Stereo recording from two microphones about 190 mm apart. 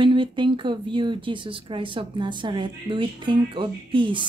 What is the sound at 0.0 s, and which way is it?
Speech, 25° right (ahead or behind).